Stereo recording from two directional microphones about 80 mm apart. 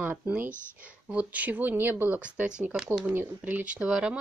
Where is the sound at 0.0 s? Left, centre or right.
Right.